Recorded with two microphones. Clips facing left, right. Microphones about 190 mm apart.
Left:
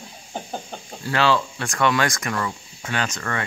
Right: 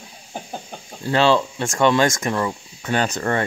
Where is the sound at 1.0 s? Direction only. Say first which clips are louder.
Right 4 dB; 25° right (ahead or behind).